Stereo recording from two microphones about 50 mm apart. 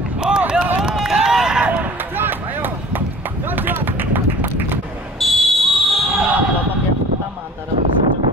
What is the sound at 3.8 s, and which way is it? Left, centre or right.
Run, right.